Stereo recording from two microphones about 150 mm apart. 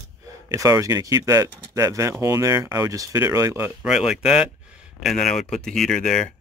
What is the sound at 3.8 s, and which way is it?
Speech, 5° right (ahead or behind).